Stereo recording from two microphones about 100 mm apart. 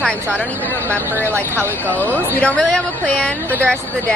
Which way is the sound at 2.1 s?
15° left (ahead or behind).